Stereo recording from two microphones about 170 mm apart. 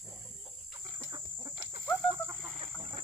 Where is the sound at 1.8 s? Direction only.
15° right (ahead or behind).